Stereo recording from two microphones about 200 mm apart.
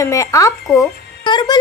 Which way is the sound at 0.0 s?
15° left (ahead or behind).